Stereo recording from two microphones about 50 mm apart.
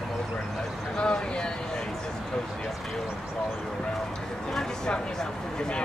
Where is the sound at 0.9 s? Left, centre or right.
Centre.